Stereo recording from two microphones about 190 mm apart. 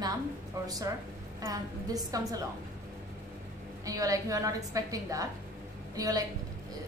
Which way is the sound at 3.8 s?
20° right (ahead or behind).